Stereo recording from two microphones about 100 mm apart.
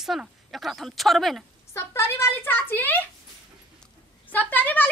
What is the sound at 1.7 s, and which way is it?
A woman's voice, 25° left (ahead or behind).